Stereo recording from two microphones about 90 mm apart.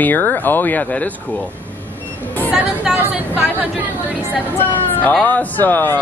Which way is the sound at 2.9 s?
20° right (ahead or behind).